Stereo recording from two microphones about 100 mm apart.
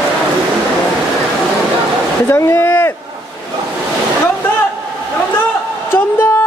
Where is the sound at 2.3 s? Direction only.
25° left (ahead or behind).